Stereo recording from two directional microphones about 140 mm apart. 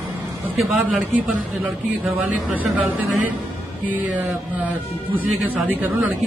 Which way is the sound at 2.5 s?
10° right (ahead or behind).